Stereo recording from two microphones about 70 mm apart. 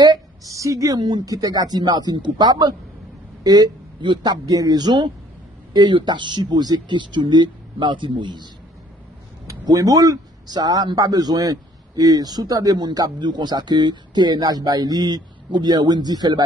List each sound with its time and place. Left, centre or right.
0.5 s a woman's voice: right
1.0 s a man's voice: right
9.5 s speech: right
11.0 s a man's voice: right